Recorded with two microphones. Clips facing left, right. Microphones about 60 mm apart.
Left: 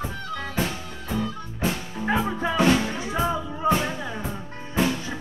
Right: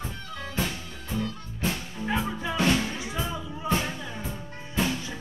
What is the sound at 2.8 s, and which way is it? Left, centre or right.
Music, left.